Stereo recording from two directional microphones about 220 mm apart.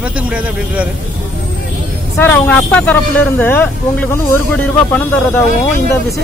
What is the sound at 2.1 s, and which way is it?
Speech, 10° left (ahead or behind).